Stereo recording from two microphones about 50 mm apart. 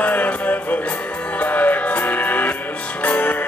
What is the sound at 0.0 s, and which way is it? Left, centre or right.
Music, left.